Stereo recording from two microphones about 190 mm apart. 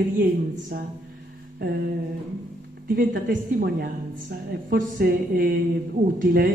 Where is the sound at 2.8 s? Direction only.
50° right (ahead or behind).